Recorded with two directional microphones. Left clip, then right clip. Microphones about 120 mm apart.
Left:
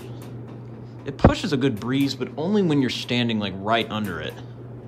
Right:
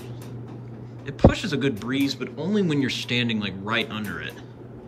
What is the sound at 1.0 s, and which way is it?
Speech, 15° left (ahead or behind).